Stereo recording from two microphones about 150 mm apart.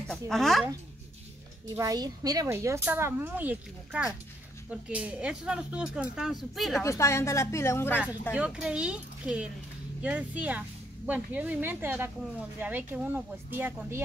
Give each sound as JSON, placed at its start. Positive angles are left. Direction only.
{"t": 0.1, "sound": "speech", "side_deg": 0}
{"t": 1.8, "sound": "speech", "side_deg": -25}
{"t": 6.8, "sound": "speech", "side_deg": 20}
{"t": 7.9, "sound": "speech", "side_deg": -10}